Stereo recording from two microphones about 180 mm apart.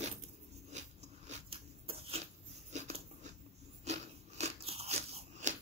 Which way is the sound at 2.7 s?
40° right (ahead or behind).